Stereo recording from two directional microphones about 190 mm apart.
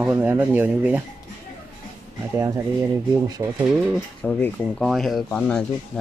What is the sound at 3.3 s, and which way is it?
Speech, 15° right (ahead or behind).